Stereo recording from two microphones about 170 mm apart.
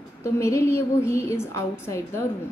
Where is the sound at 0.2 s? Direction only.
15° left (ahead or behind).